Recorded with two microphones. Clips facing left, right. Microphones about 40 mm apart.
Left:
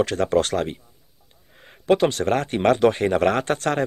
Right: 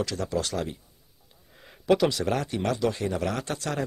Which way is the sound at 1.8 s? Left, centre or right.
Left.